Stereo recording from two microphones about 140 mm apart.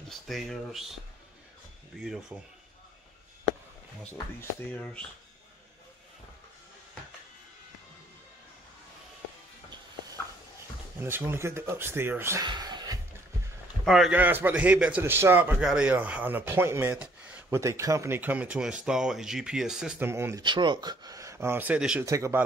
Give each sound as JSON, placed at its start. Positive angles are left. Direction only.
{"t": 0.1, "sound": "speech", "side_deg": 0}
{"t": 2.0, "sound": "speech", "side_deg": -5}
{"t": 4.0, "sound": "speech", "side_deg": 10}
{"t": 11.0, "sound": "speech", "side_deg": -15}
{"t": 12.4, "sound": "music", "side_deg": -30}
{"t": 13.8, "sound": "speech", "side_deg": 0}
{"t": 14.1, "sound": "speech", "side_deg": -15}
{"t": 16.9, "sound": "a sound", "side_deg": -10}
{"t": 17.6, "sound": "speech", "side_deg": -20}
{"t": 20.0, "sound": "speech", "side_deg": -15}
{"t": 20.4, "sound": "speech", "side_deg": -35}
{"t": 22.0, "sound": "speech", "side_deg": -20}